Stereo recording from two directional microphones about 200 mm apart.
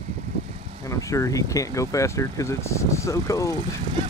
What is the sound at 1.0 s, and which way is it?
Speech, 15° left (ahead or behind).